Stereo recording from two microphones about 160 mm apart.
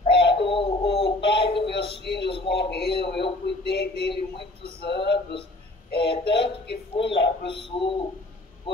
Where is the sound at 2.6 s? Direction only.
90° left.